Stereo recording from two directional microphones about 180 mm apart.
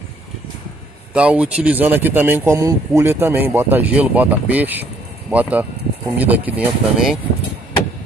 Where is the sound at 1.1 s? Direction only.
5° right (ahead or behind).